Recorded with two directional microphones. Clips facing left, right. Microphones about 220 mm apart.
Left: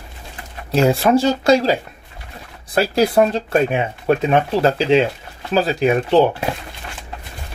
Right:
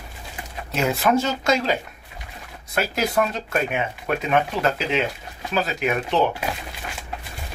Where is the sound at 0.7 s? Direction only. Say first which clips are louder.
Left 6 dB; 30° left (ahead or behind).